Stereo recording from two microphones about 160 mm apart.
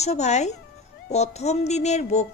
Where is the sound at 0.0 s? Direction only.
45° left (ahead or behind).